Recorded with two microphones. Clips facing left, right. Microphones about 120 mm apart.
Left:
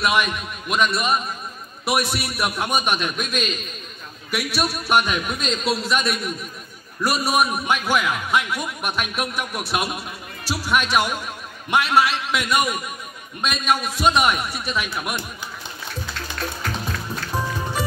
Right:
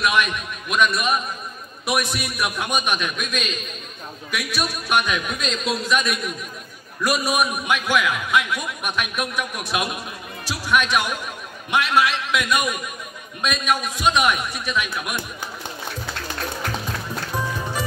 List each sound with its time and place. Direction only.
0.0 s a man's voice: 30° left (ahead or behind)